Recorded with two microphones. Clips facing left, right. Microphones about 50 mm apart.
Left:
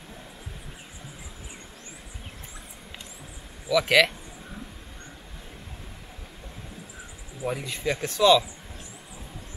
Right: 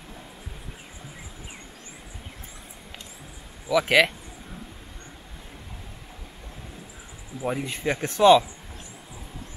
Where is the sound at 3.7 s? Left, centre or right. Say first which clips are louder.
Right 1 dB; centre.